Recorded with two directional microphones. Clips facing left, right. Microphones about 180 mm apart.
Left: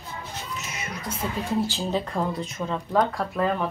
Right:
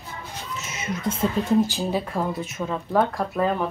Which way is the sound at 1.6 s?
15° right (ahead or behind).